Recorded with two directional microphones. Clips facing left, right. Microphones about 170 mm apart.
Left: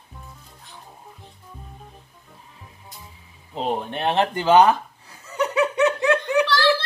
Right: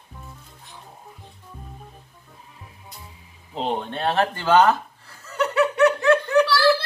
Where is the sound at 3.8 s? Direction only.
15° left (ahead or behind).